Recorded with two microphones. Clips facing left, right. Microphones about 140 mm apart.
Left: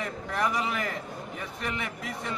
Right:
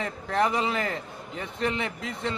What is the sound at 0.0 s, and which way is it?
A man's voice, 30° right (ahead or behind).